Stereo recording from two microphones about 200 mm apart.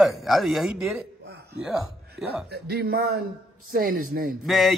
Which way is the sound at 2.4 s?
55° right (ahead or behind).